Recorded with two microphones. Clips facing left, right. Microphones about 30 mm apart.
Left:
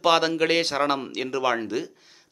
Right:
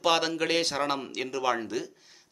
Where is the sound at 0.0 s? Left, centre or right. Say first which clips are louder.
Left 5 dB; centre.